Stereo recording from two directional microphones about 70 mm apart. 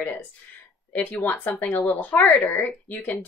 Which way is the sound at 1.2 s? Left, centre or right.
Left.